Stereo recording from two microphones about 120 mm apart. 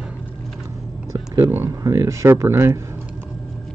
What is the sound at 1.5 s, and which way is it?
Speech, 25° right (ahead or behind).